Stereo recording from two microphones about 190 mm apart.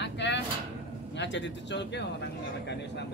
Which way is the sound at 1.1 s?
70° left (ahead or behind).